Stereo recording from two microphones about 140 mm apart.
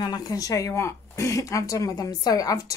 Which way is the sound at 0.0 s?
25° left (ahead or behind).